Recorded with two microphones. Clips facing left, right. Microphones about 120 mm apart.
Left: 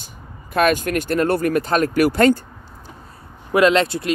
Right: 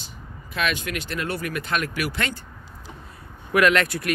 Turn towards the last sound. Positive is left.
turn(degrees=25)  # may be behind; listen again after turning